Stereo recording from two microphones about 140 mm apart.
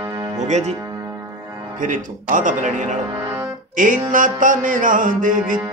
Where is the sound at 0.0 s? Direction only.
25° right (ahead or behind).